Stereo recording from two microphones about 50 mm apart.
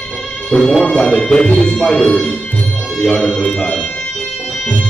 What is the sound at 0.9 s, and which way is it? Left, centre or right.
Speech, centre.